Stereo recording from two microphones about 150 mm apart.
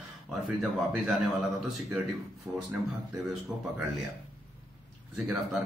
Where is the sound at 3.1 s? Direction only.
15° right (ahead or behind).